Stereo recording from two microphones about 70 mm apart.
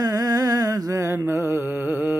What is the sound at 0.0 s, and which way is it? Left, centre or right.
Music, right.